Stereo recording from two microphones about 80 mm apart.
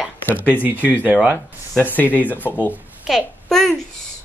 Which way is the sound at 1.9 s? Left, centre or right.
Left.